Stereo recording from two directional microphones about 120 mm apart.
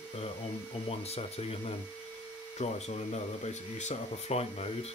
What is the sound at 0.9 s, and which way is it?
Speech, 60° left (ahead or behind).